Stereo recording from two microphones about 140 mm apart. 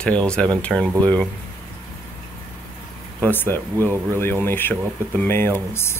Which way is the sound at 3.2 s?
15° left (ahead or behind).